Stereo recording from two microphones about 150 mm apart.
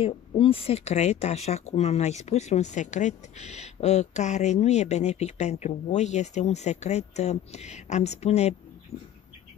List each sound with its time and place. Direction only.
0.0 s speech: 40° left (ahead or behind)